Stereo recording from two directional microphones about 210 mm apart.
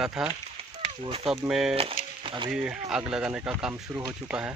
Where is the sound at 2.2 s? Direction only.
25° right (ahead or behind).